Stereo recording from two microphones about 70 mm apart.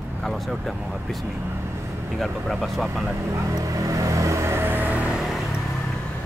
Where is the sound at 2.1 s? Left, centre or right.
Centre.